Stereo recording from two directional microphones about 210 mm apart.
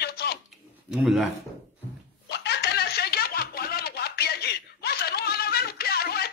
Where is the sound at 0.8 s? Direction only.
Centre (ahead or behind).